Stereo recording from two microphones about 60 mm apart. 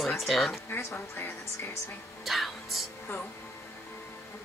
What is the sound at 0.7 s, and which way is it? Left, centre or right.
Speech, left.